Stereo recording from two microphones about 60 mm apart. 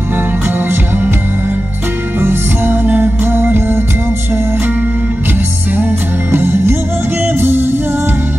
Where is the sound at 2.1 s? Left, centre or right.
Right.